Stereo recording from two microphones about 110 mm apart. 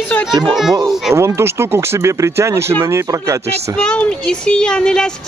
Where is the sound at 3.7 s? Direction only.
10° left (ahead or behind).